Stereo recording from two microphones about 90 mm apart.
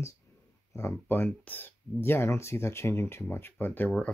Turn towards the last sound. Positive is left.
turn(degrees=20)  # may be behind; listen again after turning